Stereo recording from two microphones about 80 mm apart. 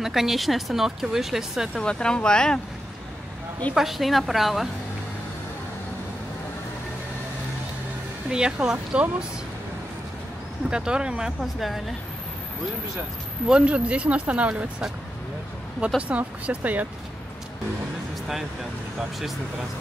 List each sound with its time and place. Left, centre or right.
0.0 s speech: centre
1.8 s speech: centre
3.7 s speech: centre
8.3 s speech: centre
10.7 s speech: centre
13.5 s speech: centre
16.0 s speech: centre
18.9 s speech: centre